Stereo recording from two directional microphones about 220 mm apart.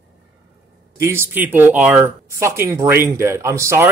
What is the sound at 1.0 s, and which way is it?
Speech, 10° right (ahead or behind).